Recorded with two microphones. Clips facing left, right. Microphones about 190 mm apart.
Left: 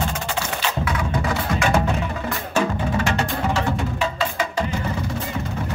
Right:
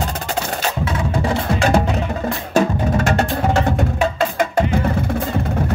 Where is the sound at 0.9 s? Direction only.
30° right (ahead or behind).